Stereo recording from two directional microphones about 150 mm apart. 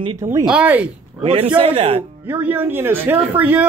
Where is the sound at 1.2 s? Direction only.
35° right (ahead or behind).